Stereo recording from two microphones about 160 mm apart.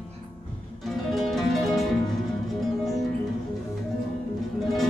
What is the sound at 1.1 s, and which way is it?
Music, centre (ahead or behind).